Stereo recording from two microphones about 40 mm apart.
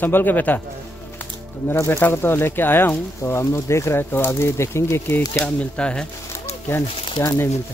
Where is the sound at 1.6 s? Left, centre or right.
Left.